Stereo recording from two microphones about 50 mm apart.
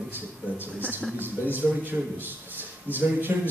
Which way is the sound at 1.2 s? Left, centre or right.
Right.